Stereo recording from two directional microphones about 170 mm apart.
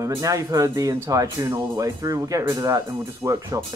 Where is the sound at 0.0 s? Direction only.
20° right (ahead or behind).